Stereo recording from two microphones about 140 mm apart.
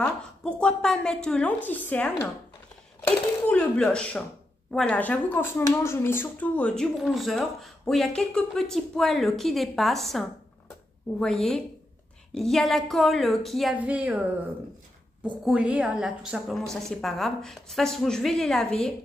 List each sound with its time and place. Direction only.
0.0 s a woman's voice: 5° left (ahead or behind)
13.7 s a woman's voice: 10° right (ahead or behind)
15.4 s speech: 10° right (ahead or behind)